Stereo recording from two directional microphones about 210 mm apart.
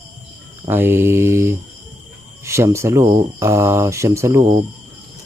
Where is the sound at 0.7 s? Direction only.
10° right (ahead or behind).